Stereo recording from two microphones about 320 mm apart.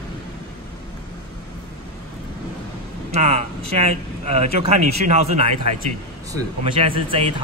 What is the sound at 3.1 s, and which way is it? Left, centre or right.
A man's voice, centre.